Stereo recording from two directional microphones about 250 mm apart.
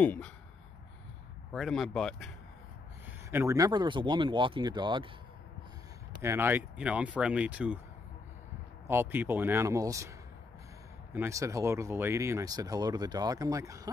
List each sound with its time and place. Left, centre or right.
0.0 s speech: centre
1.5 s speech: centre
3.3 s speech: centre
6.2 s speech: centre
8.8 s speech: centre
11.1 s speech: centre